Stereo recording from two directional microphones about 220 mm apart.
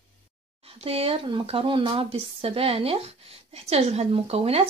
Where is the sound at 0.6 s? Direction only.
25° right (ahead or behind).